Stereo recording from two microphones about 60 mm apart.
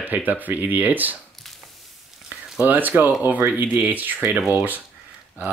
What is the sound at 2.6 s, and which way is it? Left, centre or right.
Speech, right.